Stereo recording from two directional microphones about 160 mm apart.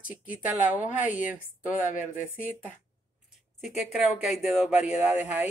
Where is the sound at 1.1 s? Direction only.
55° left (ahead or behind).